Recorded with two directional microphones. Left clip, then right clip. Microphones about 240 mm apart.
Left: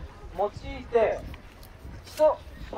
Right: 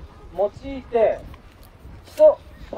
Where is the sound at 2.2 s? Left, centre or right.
Right.